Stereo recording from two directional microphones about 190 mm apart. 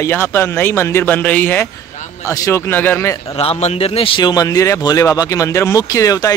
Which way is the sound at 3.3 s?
35° left (ahead or behind).